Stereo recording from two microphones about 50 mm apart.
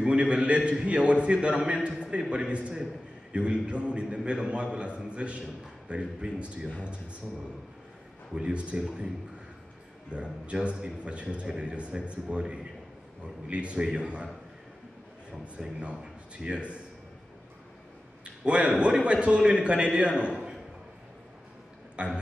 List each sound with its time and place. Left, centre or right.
0.0 s a man's voice: right
8.4 s a man's voice: right
10.1 s a man's voice: right
15.8 s a man's voice: centre
18.2 s a man's voice: right
21.9 s speech: right